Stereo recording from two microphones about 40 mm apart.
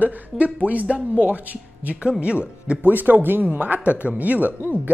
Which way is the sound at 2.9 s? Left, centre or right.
Right.